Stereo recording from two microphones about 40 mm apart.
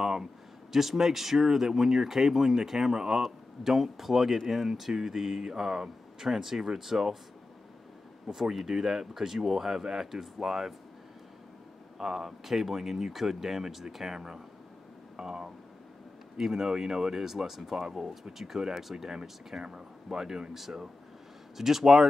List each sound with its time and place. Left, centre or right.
0.0 s a sound: centre
0.7 s speech: centre
8.3 s speech: centre
12.0 s speech: centre
19.6 s speech: centre